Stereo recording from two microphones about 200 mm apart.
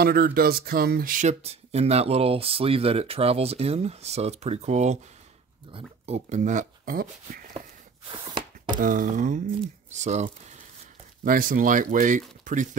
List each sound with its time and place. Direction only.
0.0 s speech: 50° right (ahead or behind)
8.1 s a sound: 25° right (ahead or behind)
8.7 s speech: 40° right (ahead or behind)